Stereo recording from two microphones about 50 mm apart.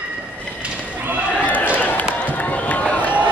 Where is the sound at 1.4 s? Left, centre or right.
Left.